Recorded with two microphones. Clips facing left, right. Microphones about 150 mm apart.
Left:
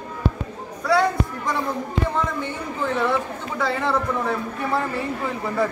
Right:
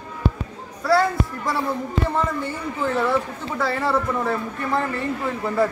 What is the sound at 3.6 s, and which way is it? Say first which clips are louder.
A man's voice: right 1 dB; 5° right (ahead or behind).